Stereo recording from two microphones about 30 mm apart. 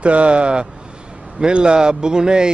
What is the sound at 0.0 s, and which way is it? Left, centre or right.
Speech, right.